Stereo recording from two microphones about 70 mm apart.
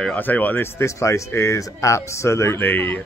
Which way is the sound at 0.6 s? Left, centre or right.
Left.